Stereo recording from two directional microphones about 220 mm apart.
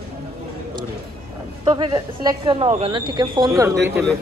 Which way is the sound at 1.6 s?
20° right (ahead or behind).